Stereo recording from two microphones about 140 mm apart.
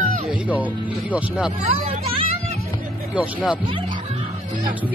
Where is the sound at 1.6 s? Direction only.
55° right (ahead or behind).